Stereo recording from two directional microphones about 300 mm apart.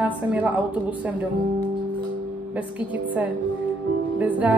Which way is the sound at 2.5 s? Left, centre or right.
Centre.